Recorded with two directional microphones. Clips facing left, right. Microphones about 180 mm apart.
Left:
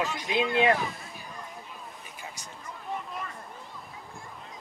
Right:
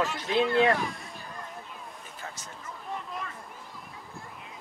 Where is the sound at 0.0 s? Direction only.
15° left (ahead or behind).